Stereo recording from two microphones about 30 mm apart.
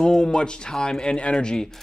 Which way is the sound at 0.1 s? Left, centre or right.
Centre.